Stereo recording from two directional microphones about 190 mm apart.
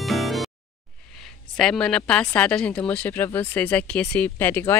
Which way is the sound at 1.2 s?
Centre (ahead or behind).